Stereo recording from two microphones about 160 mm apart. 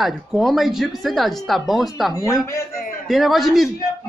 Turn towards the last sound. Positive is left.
turn(degrees=0)  # may be behind; listen again after turning